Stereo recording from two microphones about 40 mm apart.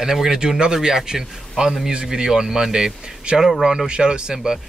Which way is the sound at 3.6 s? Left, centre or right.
Centre.